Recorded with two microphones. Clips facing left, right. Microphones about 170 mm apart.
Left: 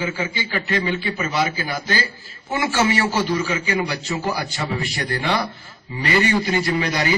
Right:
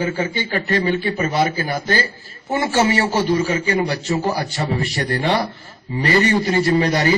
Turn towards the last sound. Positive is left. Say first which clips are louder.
# right 5 dB
turn(degrees=-35)  # may be behind; listen again after turning